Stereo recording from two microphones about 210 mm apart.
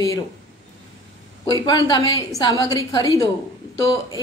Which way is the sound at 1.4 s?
20° left (ahead or behind).